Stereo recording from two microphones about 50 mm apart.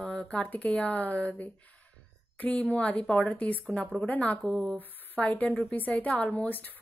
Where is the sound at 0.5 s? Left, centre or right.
Left.